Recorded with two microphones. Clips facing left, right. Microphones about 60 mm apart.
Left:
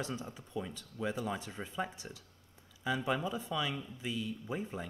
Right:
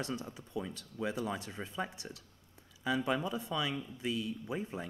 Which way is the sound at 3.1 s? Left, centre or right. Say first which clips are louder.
Right 1 dB; left.